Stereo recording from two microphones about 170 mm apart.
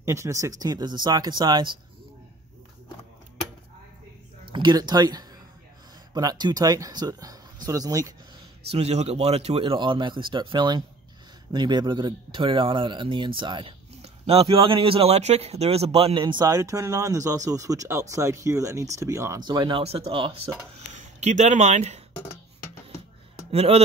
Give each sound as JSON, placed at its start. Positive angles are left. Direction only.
{"t": 0.0, "sound": "speech", "side_deg": -15}
{"t": 4.5, "sound": "speech", "side_deg": -25}
{"t": 8.6, "sound": "a man's voice", "side_deg": -35}
{"t": 20.9, "sound": "speech", "side_deg": -45}
{"t": 23.5, "sound": "a man's voice", "side_deg": -35}